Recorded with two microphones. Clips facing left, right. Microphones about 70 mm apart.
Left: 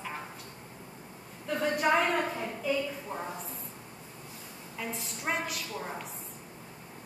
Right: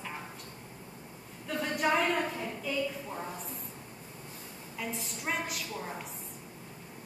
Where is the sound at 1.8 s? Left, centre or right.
Centre.